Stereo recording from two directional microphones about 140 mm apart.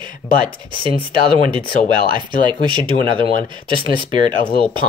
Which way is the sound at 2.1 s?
35° right (ahead or behind).